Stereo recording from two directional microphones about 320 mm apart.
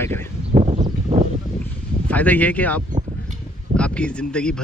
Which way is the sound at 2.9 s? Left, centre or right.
Right.